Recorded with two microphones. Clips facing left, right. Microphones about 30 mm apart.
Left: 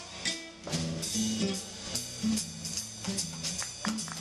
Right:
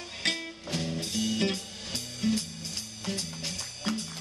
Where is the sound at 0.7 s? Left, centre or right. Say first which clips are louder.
Right 2 dB; centre.